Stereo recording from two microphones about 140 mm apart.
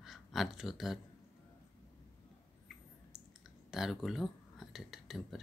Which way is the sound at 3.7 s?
Centre (ahead or behind).